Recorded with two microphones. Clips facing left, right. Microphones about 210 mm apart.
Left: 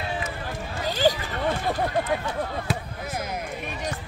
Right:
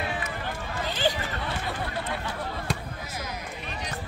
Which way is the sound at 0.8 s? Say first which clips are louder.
Left 6 dB; 40° left (ahead or behind).